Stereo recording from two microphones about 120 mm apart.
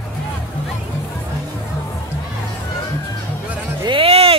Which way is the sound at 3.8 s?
50° right (ahead or behind).